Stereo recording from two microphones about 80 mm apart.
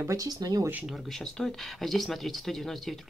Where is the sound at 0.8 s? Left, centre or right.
Centre.